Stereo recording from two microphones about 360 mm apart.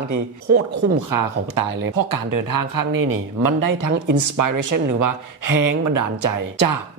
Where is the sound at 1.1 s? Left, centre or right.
Right.